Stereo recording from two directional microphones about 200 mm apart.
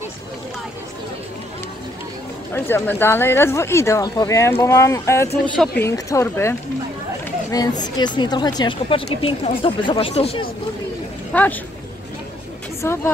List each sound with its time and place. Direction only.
2.5 s speech: 10° left (ahead or behind)
7.5 s speech: 20° left (ahead or behind)
11.3 s speech: 5° left (ahead or behind)
12.8 s speech: 10° left (ahead or behind)